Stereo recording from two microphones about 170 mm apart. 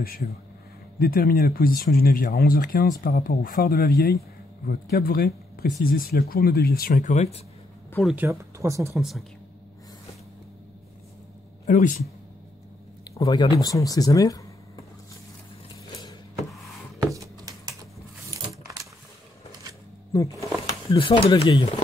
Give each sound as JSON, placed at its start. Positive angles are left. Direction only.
{"t": 0.0, "sound": "speech", "side_deg": 60}
{"t": 8.2, "sound": "speech", "side_deg": -15}
{"t": 8.9, "sound": "a woman's voice", "side_deg": 0}
{"t": 11.6, "sound": "speech", "side_deg": 50}
{"t": 13.1, "sound": "speech", "side_deg": 20}
{"t": 17.0, "sound": "a sound", "side_deg": -20}
{"t": 20.2, "sound": "a sound", "side_deg": -20}
{"t": 20.9, "sound": "speech", "side_deg": 30}